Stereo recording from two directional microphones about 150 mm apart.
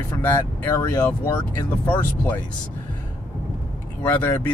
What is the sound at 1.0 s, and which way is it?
Speech, 10° left (ahead or behind).